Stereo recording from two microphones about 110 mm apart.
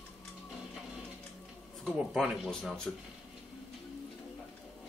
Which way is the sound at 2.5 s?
5° left (ahead or behind).